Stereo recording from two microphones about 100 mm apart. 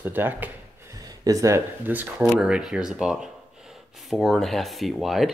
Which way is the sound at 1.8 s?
15° right (ahead or behind).